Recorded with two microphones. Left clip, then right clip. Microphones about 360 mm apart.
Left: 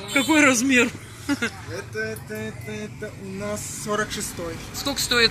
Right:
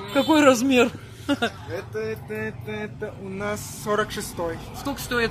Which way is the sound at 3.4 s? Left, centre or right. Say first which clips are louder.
Right 1 dB; right.